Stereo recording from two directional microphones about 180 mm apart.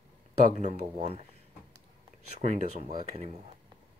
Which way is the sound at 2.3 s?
40° right (ahead or behind).